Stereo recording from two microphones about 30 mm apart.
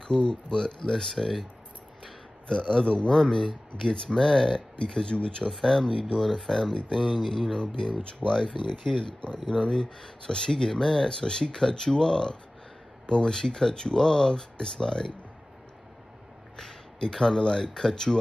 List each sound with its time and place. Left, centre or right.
0.2 s speech: left
1.1 s speech: centre
2.4 s speech: left
4.1 s speech: centre
5.5 s speech: centre
6.2 s speech: centre
6.9 s speech: left
8.2 s speech: left
11.1 s speech: left
16.5 s speech: centre